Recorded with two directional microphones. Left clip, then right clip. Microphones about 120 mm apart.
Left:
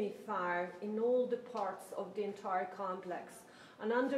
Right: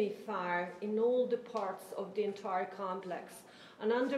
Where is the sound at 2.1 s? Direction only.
40° right (ahead or behind).